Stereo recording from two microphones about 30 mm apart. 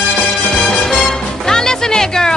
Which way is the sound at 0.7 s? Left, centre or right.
Centre.